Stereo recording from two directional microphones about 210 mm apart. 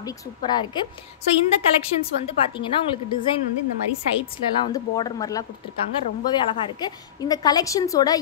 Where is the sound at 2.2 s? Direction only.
25° left (ahead or behind).